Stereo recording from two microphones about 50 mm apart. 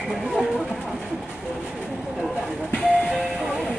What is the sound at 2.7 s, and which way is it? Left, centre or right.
Music, centre.